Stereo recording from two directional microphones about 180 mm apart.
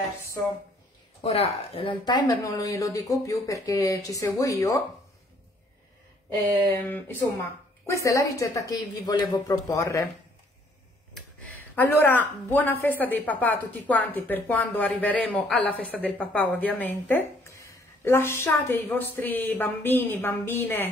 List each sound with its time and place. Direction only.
1.2 s speech: 35° left (ahead or behind); by 4.7 s 15° left (ahead or behind)
6.7 s speech: 10° left (ahead or behind)
11.1 s speech: 10° left (ahead or behind)